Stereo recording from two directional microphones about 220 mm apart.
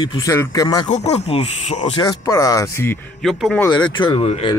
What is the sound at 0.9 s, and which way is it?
Speech, 30° left (ahead or behind).